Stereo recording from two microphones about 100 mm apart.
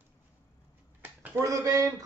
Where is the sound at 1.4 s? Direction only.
30° right (ahead or behind).